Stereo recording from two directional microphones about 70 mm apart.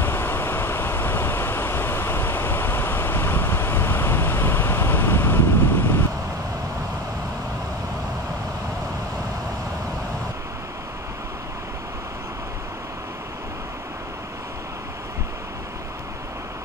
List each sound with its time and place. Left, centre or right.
0.0 s vehicle: left